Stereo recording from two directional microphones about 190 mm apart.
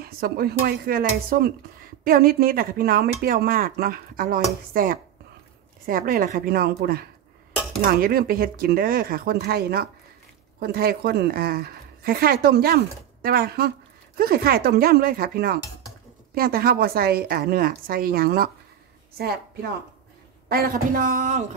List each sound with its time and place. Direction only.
0.0 s a woman's voice: 50° right (ahead or behind)
20.4 s a woman's voice: 55° right (ahead or behind)